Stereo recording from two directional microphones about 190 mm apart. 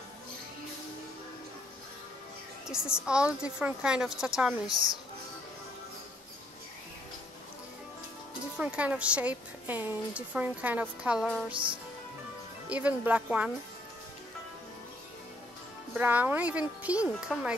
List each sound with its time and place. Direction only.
2.7 s a woman's voice: 5° right (ahead or behind)
8.5 s a woman's voice: 5° right (ahead or behind)
11.5 s speech: 25° right (ahead or behind)
12.6 s a woman's voice: 5° right (ahead or behind)
15.9 s a woman's voice: 10° right (ahead or behind)